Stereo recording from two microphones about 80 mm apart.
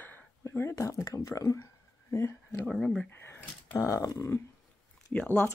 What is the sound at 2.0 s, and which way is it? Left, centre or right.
Speech, left.